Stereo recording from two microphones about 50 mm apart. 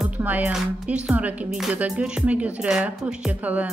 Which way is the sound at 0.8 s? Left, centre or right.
Right.